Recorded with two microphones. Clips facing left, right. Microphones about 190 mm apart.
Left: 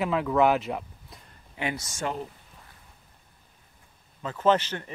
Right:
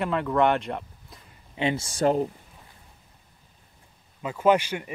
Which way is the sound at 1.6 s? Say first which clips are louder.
Right 7 dB; 25° right (ahead or behind).